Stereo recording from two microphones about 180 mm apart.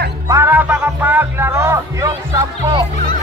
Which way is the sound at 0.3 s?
10° right (ahead or behind).